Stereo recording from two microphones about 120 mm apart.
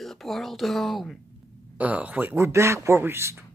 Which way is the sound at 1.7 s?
10° right (ahead or behind).